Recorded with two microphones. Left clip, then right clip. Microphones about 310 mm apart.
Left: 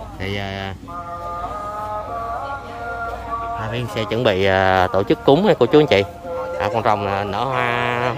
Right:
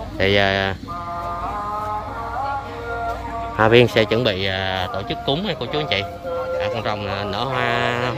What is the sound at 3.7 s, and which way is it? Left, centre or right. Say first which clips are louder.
A man's voice: right 9 dB; centre.